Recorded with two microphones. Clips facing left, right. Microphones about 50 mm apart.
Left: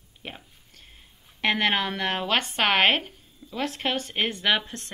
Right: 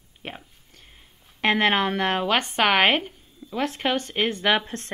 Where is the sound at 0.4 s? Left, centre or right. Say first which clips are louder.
Right 1 dB; centre.